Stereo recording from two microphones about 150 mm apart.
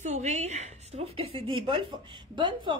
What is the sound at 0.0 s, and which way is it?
A woman's voice, 50° right (ahead or behind).